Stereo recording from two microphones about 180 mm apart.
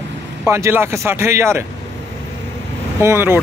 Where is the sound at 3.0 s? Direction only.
15° right (ahead or behind).